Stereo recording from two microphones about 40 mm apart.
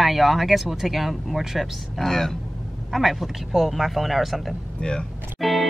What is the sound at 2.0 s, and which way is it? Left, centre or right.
Speech, centre.